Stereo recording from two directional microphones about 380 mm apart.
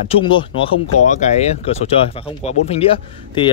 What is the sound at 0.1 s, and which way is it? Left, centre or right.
Speech, centre.